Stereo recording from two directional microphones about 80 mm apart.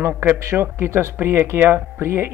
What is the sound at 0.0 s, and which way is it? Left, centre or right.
Speech, right.